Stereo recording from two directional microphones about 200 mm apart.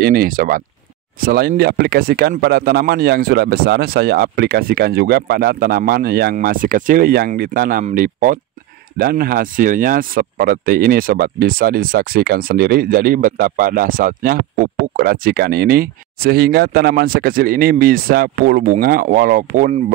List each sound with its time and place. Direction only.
0.0 s speech: 45° right (ahead or behind)